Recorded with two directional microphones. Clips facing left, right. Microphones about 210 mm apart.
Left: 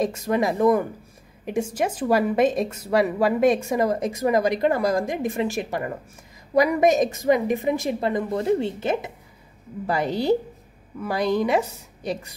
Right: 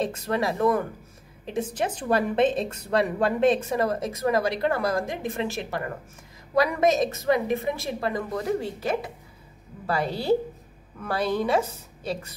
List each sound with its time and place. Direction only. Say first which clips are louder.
0.0 s speech: left 4 dB; 10° left (ahead or behind)